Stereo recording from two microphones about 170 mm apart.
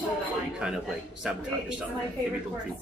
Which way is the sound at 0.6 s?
5° right (ahead or behind).